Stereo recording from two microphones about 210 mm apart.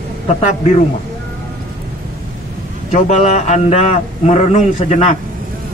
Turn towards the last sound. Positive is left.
turn(degrees=35)  # may be behind; listen again after turning